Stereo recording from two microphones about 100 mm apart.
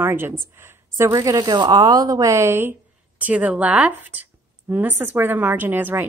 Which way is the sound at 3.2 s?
15° right (ahead or behind).